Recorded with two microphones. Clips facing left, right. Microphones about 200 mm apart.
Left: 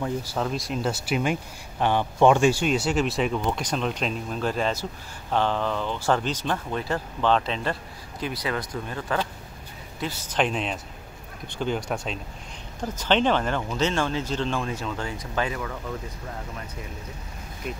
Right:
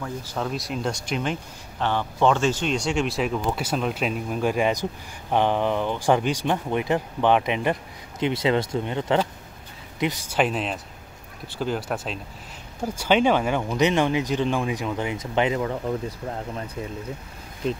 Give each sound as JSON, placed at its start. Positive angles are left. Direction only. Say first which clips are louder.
{"t": 0.4, "sound": "speech", "louder": "right 1 dB", "side_deg": 0}